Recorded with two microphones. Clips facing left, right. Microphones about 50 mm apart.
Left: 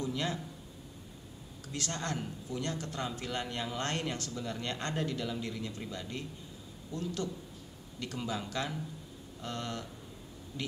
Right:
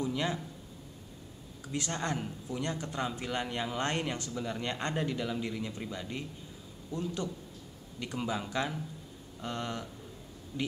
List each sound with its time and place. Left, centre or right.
0.0 s speech: centre
1.7 s speech: centre